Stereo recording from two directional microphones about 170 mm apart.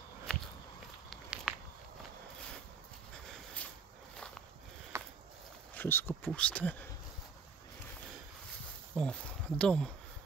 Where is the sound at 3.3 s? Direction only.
5° left (ahead or behind).